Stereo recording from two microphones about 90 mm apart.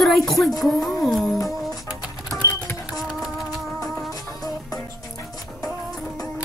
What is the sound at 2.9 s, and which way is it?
Music, 5° right (ahead or behind).